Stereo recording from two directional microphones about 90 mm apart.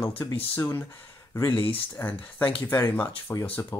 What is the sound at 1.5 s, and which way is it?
Speech, 85° left.